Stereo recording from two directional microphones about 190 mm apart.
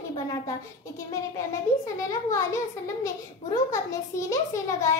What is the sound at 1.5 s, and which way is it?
Speech, 15° left (ahead or behind).